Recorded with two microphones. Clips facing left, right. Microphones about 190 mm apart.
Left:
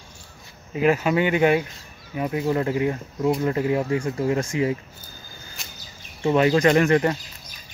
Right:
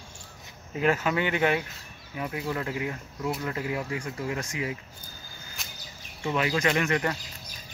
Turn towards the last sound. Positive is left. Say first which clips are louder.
# left 8 dB
turn(degrees=30)  # may be behind; listen again after turning